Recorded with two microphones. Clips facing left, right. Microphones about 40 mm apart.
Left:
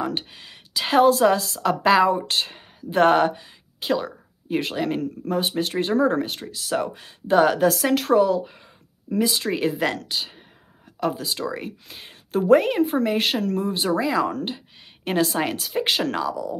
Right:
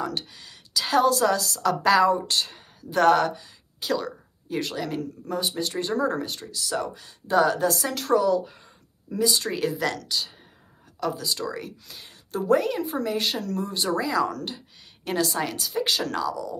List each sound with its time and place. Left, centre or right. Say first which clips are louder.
0.0 s a woman's voice: left 3 dB; left
9.1 s a woman's voice: left 2 dB; left